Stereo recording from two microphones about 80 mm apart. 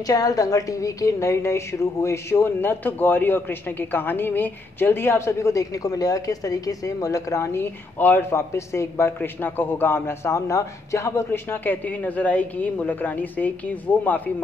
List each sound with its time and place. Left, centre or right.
0.0 s a woman's voice: left